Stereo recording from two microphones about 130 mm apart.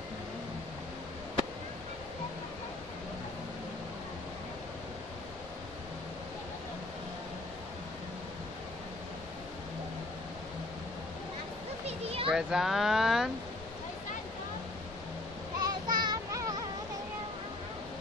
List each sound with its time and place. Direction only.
11.8 s a sound: 50° right (ahead or behind)
12.3 s speech: 5° right (ahead or behind)
15.6 s child singing: 35° right (ahead or behind)